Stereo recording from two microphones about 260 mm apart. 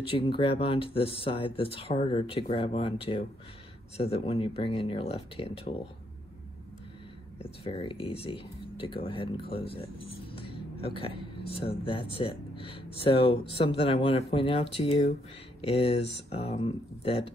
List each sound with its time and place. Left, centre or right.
0.1 s speech: centre
7.6 s speech: left